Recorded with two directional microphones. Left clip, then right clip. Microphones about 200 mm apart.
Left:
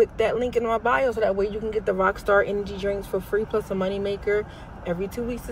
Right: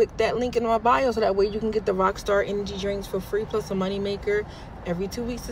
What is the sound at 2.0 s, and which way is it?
Speech, 10° right (ahead or behind).